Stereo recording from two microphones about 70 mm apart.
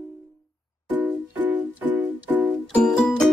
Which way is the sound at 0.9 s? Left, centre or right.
Centre.